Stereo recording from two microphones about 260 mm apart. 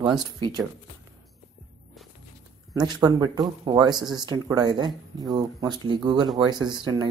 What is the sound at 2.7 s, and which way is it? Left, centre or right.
Speech, centre.